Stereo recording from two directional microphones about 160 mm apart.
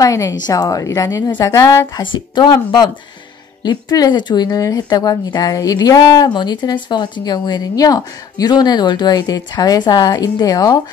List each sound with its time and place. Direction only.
0.0 s speech: 20° left (ahead or behind)